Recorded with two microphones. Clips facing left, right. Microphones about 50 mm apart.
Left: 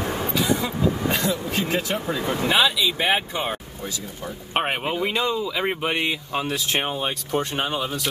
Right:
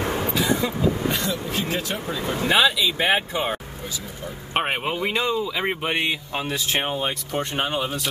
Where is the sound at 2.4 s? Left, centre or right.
Centre.